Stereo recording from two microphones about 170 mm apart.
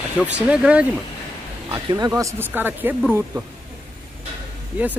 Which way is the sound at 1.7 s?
25° right (ahead or behind).